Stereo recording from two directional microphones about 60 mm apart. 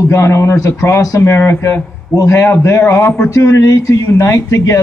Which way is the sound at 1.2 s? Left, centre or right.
Left.